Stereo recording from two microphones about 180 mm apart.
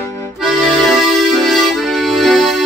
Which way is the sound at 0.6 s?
Centre (ahead or behind).